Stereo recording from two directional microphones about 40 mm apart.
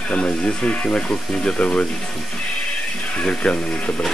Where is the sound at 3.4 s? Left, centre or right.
Left.